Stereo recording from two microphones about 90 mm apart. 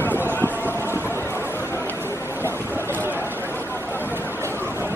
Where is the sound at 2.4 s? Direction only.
25° left (ahead or behind).